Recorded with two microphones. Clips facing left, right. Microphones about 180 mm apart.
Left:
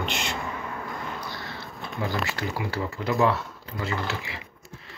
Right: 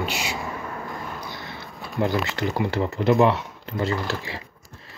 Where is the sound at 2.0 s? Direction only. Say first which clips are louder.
Right 7 dB; 60° right (ahead or behind).